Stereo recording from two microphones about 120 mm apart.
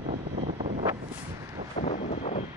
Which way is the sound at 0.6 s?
75° right (ahead or behind).